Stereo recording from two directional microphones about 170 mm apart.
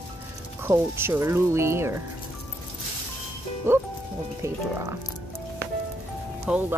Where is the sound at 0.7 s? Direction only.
15° right (ahead or behind).